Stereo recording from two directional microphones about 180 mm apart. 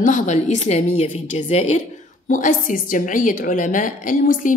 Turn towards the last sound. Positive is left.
turn(degrees=50)  # may be behind; listen again after turning